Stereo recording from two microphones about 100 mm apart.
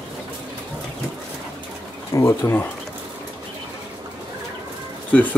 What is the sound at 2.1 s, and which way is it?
Speech, 25° left (ahead or behind).